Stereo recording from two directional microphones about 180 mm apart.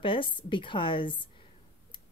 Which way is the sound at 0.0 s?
30° left (ahead or behind).